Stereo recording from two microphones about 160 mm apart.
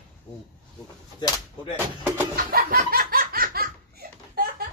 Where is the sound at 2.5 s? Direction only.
70° right (ahead or behind).